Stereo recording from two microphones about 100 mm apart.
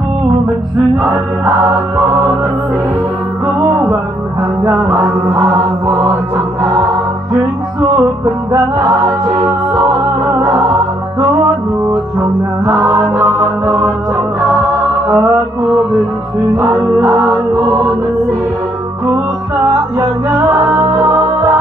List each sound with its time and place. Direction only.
1.4 s music: 20° right (ahead or behind)
3.9 s music: 25° right (ahead or behind)
8.5 s music: 30° right (ahead or behind)
10.4 s music: 30° right (ahead or behind)
12.6 s mantra: 25° right (ahead or behind)
13.7 s music: 15° right (ahead or behind)
16.5 s mantra: 25° right (ahead or behind)
20.0 s music: 35° right (ahead or behind)